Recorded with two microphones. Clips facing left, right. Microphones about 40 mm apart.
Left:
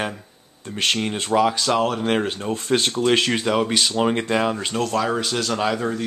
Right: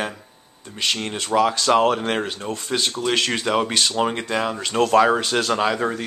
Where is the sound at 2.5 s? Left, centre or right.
Left.